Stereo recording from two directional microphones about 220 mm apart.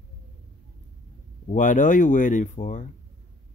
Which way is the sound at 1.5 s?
35° left (ahead or behind).